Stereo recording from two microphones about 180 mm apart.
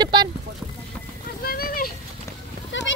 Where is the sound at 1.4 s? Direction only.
55° left (ahead or behind).